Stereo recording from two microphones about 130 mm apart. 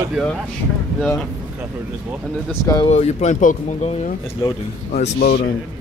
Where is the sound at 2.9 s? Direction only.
60° left (ahead or behind); by 4.1 s 75° left (ahead or behind).